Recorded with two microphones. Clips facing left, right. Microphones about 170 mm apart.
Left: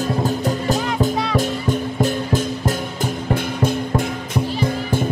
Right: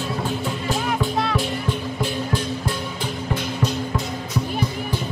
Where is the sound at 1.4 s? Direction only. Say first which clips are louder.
Left 4 dB; 45° left (ahead or behind).